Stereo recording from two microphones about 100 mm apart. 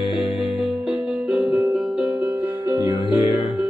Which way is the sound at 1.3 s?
Centre (ahead or behind).